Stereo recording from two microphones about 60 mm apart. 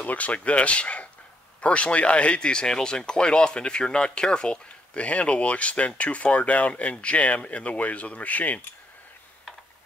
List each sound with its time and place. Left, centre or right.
0.0 s speech: left